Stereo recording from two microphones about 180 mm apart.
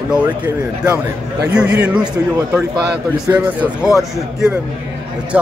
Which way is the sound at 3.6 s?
5° right (ahead or behind).